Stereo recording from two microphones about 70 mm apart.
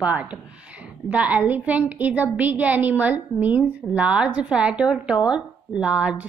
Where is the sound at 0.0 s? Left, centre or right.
Right.